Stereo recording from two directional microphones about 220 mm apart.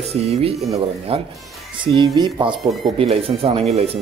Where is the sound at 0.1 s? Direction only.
30° right (ahead or behind).